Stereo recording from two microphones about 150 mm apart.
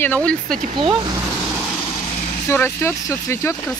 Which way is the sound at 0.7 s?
35° right (ahead or behind).